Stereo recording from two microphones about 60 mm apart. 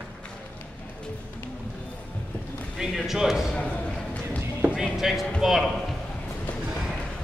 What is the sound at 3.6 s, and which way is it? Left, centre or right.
Clip-clop, left.